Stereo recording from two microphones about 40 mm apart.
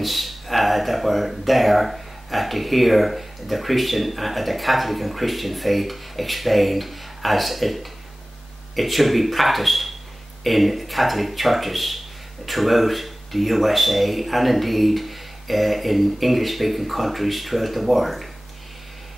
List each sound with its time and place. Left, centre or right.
0.0 s speech: centre